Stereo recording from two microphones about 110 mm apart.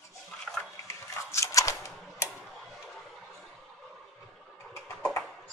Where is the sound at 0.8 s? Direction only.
30° left (ahead or behind).